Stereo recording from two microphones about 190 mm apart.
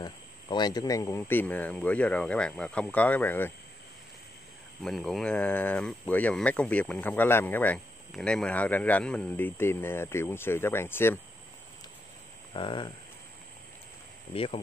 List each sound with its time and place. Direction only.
0.0 s speech: 20° left (ahead or behind)
4.8 s speech: centre (ahead or behind)
12.5 s speech: 25° left (ahead or behind)
14.3 s speech: 30° left (ahead or behind)